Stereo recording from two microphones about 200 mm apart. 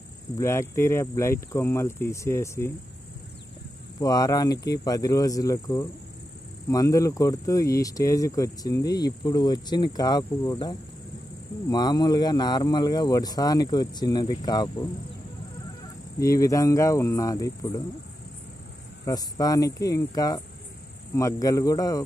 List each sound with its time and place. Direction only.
0.4 s speech: 15° left (ahead or behind)
4.0 s speech: 20° left (ahead or behind)
16.2 s speech: 15° left (ahead or behind)
19.0 s speech: 20° left (ahead or behind)